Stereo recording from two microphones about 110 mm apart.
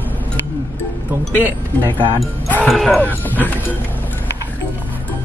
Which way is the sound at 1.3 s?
20° left (ahead or behind).